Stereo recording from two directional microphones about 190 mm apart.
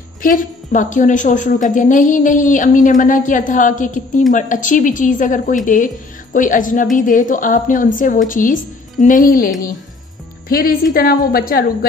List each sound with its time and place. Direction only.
0.2 s a woman's voice: 45° left (ahead or behind)
10.9 s a woman's voice: 50° left (ahead or behind)